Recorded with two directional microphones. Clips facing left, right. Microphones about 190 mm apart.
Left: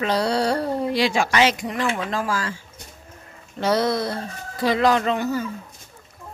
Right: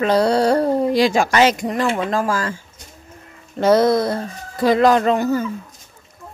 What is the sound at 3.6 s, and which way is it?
Speech, 50° right (ahead or behind).